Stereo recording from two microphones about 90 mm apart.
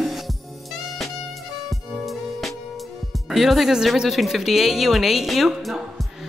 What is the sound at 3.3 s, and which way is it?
A man's voice, centre (ahead or behind).